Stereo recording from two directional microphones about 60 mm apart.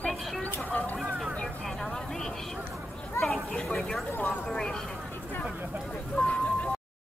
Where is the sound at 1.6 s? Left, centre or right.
Centre.